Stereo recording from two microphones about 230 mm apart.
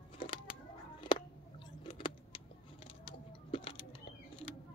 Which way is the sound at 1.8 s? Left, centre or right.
Left.